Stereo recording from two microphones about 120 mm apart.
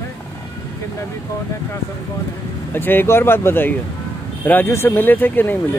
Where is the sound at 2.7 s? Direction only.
15° left (ahead or behind).